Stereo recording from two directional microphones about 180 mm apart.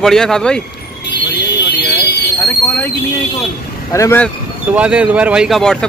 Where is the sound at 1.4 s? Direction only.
75° left (ahead or behind).